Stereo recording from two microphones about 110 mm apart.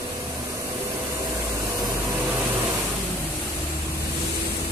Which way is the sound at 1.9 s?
20° right (ahead or behind).